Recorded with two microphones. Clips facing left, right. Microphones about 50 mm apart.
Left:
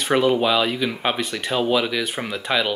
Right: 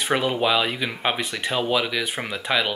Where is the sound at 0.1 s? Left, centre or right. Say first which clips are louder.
Left 4 dB; centre.